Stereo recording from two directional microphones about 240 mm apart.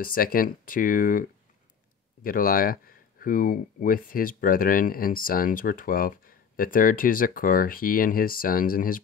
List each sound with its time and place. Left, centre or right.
0.0 s speech: left